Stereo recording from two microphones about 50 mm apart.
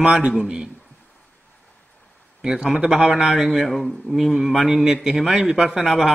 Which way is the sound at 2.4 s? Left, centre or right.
Centre.